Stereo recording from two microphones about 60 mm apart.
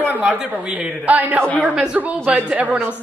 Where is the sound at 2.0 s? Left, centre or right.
Right.